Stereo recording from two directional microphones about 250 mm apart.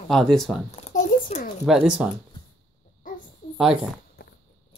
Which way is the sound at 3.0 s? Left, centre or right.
Left.